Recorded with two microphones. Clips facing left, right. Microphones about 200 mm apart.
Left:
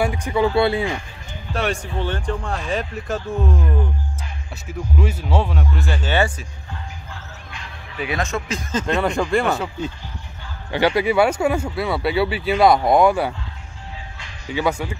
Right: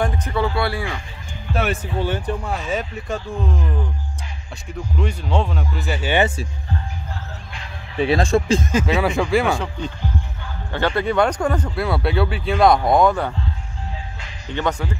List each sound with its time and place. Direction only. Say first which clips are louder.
0.0 s a sound: left 2 dB; 10° left (ahead or behind)
0.6 s speech: left 5 dB; 20° left (ahead or behind)
1.5 s speech: right 1 dB; 5° right (ahead or behind)
4.9 s speech: even; 5° left (ahead or behind); by 6.4 s 20° right (ahead or behind)
8.0 s speech: right 7 dB; 30° right (ahead or behind)
8.7 s speech: left 3 dB; 5° right (ahead or behind)
14.5 s speech: left 1 dB; 10° left (ahead or behind)